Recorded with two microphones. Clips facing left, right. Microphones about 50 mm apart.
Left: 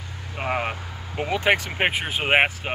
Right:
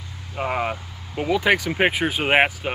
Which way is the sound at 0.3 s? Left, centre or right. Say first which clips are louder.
Right 1 dB; centre.